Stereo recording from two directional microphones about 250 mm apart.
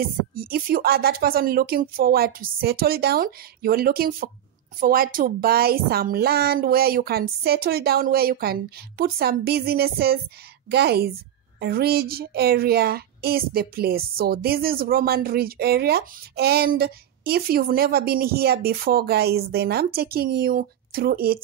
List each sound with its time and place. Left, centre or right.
0.0 s speech: right